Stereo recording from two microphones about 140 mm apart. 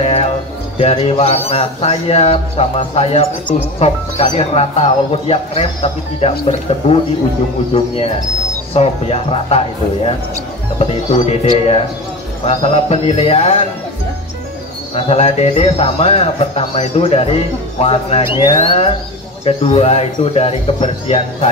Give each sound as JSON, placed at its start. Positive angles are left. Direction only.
{"t": 0.0, "sound": "music", "side_deg": 45}
{"t": 0.7, "sound": "a man's voice", "side_deg": 45}
{"t": 10.8, "sound": "a man's voice", "side_deg": 50}
{"t": 15.0, "sound": "a man's voice", "side_deg": 45}